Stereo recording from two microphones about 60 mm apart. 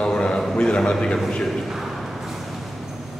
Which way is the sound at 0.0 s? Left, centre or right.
Centre.